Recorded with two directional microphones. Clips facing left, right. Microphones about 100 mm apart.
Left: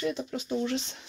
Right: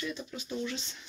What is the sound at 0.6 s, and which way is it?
Speech, 80° left.